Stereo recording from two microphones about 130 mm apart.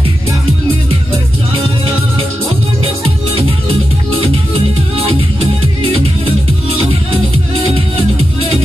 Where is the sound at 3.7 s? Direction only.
45° right (ahead or behind).